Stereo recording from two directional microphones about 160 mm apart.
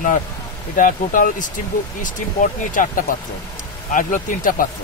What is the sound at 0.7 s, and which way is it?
Speech, 55° left (ahead or behind).